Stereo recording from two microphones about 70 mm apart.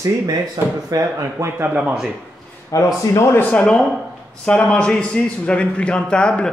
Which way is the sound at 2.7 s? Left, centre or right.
Left.